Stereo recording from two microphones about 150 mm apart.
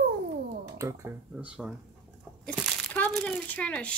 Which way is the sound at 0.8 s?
20° right (ahead or behind).